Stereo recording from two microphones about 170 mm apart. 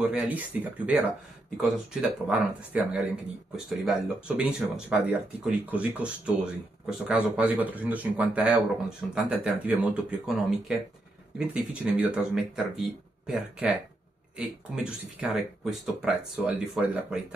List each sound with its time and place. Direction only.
0.1 s speech: 10° right (ahead or behind)